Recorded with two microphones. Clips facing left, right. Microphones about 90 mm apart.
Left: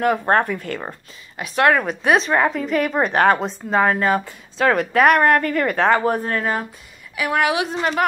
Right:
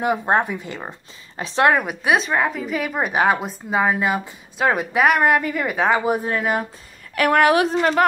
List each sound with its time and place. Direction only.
0.3 s a woman's voice: 15° right (ahead or behind)
1.3 s a woman's voice: 30° right (ahead or behind)
2.0 s a woman's voice: centre (ahead or behind)
7.2 s a woman's voice: 50° right (ahead or behind)